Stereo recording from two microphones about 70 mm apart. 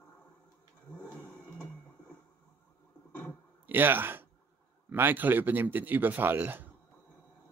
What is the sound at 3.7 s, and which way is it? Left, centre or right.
Speech, right.